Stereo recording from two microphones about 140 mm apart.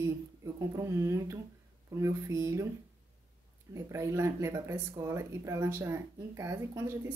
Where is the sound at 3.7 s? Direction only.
20° right (ahead or behind).